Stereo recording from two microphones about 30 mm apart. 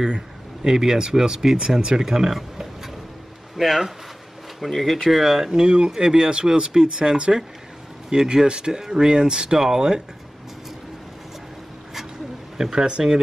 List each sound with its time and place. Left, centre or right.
0.7 s speech: centre
5.5 s speech: right
12.7 s speech: right